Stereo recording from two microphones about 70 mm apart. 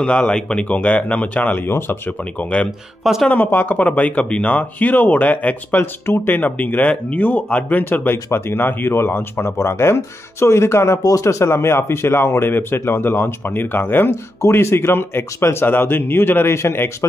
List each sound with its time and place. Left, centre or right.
0.0 s speech: centre
1.7 s speech: left
3.0 s speech: centre
3.3 s speech: left
5.8 s speech: left
11.0 s speech: left